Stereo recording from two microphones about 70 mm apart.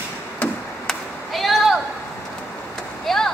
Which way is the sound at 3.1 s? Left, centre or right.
Centre.